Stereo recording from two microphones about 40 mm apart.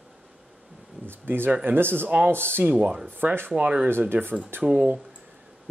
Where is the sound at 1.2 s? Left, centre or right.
Right.